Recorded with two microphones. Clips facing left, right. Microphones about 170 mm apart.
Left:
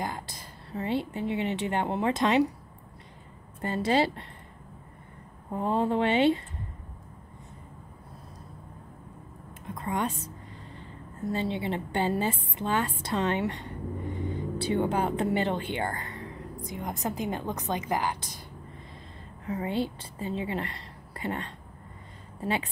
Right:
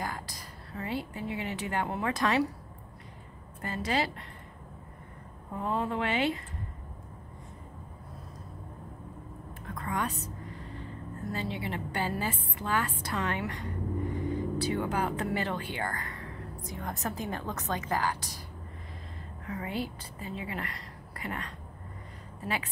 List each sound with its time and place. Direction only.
0.0 s a woman's voice: 25° left (ahead or behind)
3.6 s speech: 30° left (ahead or behind)
5.5 s speech: 30° left (ahead or behind)
9.7 s music: 20° left (ahead or behind)
11.3 s speech: 25° left (ahead or behind)
19.4 s a woman's voice: 25° left (ahead or behind)